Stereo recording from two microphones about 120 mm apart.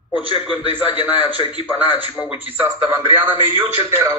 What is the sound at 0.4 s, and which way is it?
Speech, 5° right (ahead or behind).